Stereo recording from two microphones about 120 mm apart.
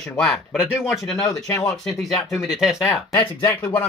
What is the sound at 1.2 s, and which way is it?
Speech, 30° left (ahead or behind).